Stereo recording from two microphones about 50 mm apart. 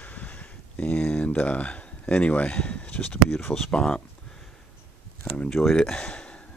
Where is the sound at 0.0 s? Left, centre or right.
Left.